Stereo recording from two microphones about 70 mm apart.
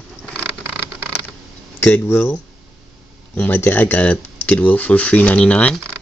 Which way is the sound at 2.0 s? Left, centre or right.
Left.